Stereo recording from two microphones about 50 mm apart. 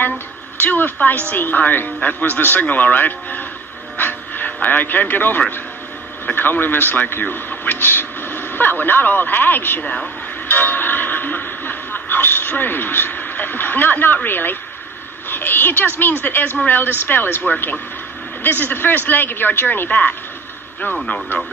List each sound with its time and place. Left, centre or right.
0.6 s a man's voice: left
4.5 s a man's voice: left
9.8 s speech: left
10.5 s music: left
15.2 s a woman's voice: left